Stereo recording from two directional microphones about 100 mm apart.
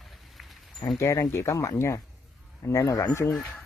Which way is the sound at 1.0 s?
25° left (ahead or behind).